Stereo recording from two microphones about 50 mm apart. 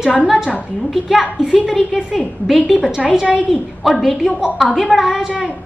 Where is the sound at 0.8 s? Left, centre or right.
Centre.